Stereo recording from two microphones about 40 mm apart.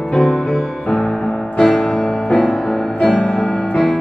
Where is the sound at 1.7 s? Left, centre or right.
Left.